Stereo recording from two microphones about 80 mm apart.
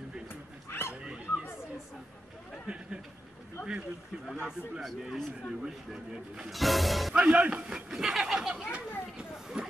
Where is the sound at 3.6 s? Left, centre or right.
Left.